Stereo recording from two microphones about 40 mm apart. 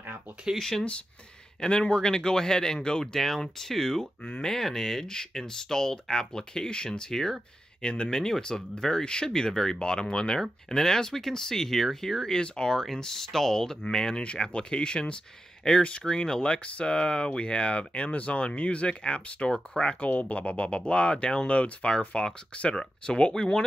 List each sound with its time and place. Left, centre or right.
0.6 s speech: centre
1.6 s speech: left
3.2 s speech: centre
12.4 s speech: left
12.8 s speech: centre; by 20.1 s left
20.1 s speech: left; by 23.6 s centre